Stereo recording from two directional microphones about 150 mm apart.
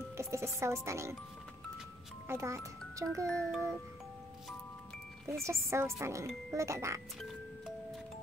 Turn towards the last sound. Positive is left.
turn(degrees=-20)  # may be behind; listen again after turning